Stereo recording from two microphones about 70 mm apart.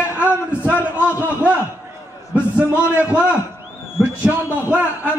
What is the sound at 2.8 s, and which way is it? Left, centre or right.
A man's voice, right.